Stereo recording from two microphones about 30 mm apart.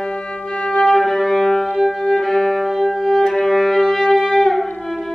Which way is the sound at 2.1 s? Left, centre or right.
Centre.